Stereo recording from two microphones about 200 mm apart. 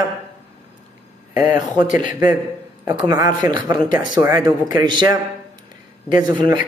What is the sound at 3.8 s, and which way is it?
Speech, 40° left (ahead or behind).